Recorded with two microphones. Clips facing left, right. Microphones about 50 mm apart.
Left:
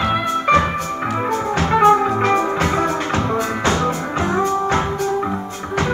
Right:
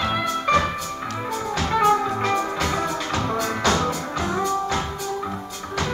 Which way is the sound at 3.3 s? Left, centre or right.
Centre.